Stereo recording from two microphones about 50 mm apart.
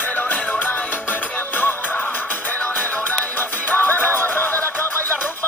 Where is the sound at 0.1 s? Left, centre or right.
Left.